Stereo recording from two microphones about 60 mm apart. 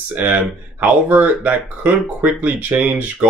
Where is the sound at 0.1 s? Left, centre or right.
Right.